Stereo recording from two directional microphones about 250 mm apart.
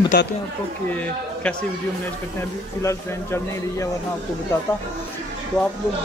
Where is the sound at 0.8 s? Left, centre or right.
Centre.